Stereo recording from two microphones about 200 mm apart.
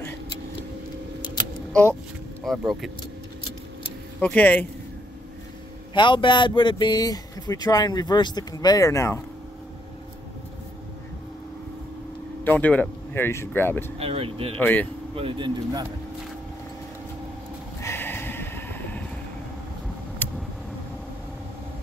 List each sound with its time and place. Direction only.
2.4 s speech: centre (ahead or behind)
4.2 s speech: 5° left (ahead or behind)
5.9 s speech: 25° left (ahead or behind)
12.4 s speech: 10° left (ahead or behind)
13.9 s speech: 30° right (ahead or behind)
14.6 s speech: 10° left (ahead or behind)
15.1 s speech: 25° right (ahead or behind)
17.8 s a sound: 10° left (ahead or behind)
20.2 s vehicle: 10° left (ahead or behind)